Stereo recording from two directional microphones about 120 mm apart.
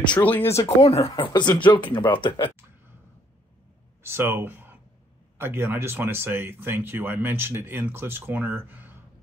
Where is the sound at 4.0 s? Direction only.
20° right (ahead or behind).